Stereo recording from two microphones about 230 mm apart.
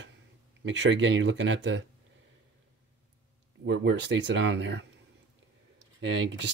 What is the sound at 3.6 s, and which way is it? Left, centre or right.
Speech, right.